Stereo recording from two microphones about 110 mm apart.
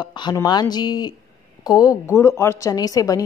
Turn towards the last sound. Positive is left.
turn(degrees=30)  # may be behind; listen again after turning